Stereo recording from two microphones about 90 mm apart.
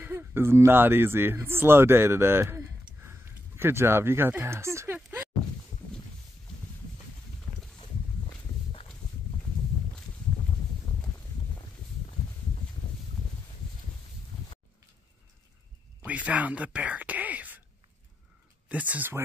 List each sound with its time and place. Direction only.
0.0 s speech: 20° right (ahead or behind)
4.9 s a sound: 20° right (ahead or behind)
16.1 s speech: 15° right (ahead or behind)
18.7 s speech: 15° right (ahead or behind)